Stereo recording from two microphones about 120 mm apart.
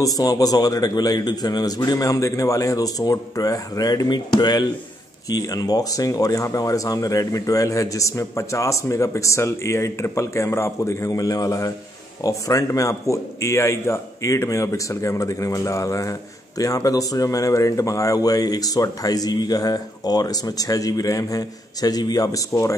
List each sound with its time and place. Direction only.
0.0 s a man's voice: 30° left (ahead or behind)